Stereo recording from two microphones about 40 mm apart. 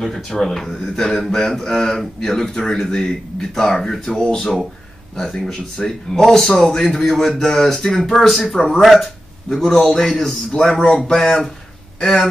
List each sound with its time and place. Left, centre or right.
0.0 s speech: centre
2.5 s speech: centre